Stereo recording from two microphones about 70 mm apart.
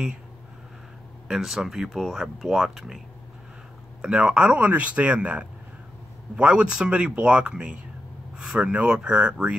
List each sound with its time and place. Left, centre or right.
1.3 s speech: centre
4.0 s speech: centre